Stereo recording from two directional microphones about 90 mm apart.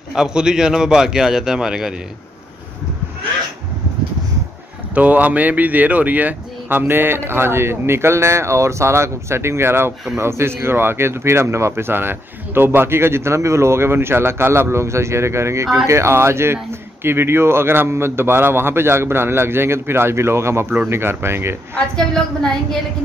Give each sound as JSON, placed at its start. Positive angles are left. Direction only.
{"t": 0.1, "sound": "a man's voice", "side_deg": -10}
{"t": 4.9, "sound": "speech", "side_deg": -15}
{"t": 21.7, "sound": "a woman's voice", "side_deg": 10}